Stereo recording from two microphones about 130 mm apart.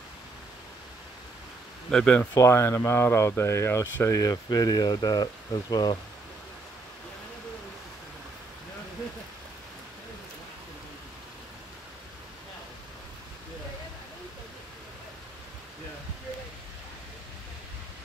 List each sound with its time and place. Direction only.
1.9 s speech: 5° left (ahead or behind)
2.3 s speech: 20° left (ahead or behind)